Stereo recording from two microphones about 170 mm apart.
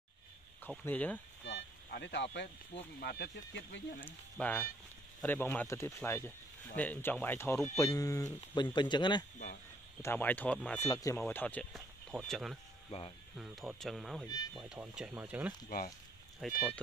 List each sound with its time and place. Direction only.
0.7 s speech: 10° left (ahead or behind)
1.4 s a sound: 80° left
3.0 s speech: 70° left (ahead or behind)
4.0 s speech: 10° left (ahead or behind)
8.7 s speech: 25° left (ahead or behind)
10.0 s speech: 10° left (ahead or behind)
10.9 s speech: 20° left (ahead or behind); by 12.5 s centre (ahead or behind)
13.7 s speech: centre (ahead or behind)
14.2 s speech: 25° left (ahead or behind)
14.6 s speech: 5° right (ahead or behind)
16.3 s speech: 5° left (ahead or behind)